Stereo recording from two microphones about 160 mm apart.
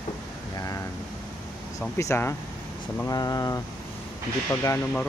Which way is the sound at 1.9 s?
15° left (ahead or behind).